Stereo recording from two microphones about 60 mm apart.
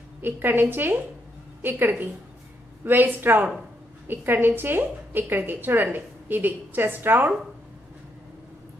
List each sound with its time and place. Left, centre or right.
0.2 s a woman's voice: right